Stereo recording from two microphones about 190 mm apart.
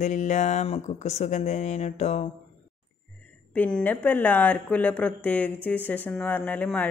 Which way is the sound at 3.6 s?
5° left (ahead or behind).